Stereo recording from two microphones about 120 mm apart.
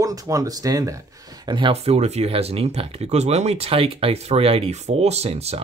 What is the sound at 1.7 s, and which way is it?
Speech, 60° right (ahead or behind).